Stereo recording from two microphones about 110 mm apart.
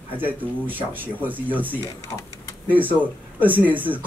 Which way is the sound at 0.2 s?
15° right (ahead or behind).